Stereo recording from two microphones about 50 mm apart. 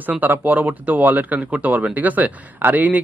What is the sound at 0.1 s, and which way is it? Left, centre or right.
A man's voice, right.